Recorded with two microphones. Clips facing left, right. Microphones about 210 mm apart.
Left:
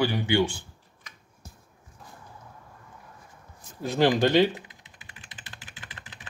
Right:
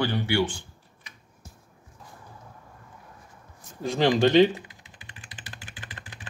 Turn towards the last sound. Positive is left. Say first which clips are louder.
# right 2 dB
turn(degrees=5)  # may be behind; listen again after turning